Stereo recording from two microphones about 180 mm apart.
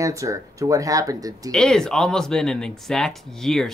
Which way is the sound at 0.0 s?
15° right (ahead or behind).